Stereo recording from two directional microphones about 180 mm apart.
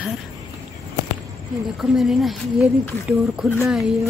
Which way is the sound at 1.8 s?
Centre (ahead or behind).